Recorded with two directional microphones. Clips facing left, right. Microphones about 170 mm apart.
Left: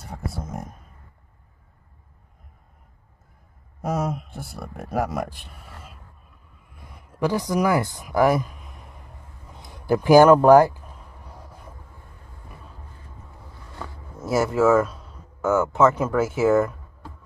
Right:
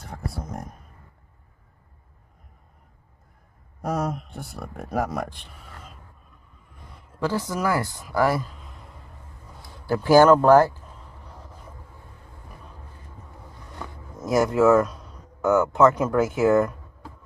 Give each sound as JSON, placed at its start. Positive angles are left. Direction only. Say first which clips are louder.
{"t": 0.0, "sound": "speech", "louder": "left 1 dB", "side_deg": 5}
{"t": 3.8, "sound": "speech", "louder": "left 1 dB", "side_deg": 5}
{"t": 6.7, "sound": "a sound", "louder": "left 1 dB", "side_deg": 10}
{"t": 14.1, "sound": "speech", "louder": "right 1 dB", "side_deg": 0}